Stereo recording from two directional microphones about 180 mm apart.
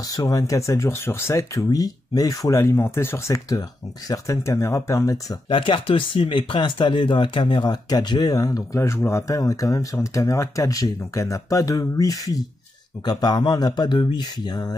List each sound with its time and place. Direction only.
0.1 s speech: 20° left (ahead or behind)
5.5 s speech: 30° left (ahead or behind)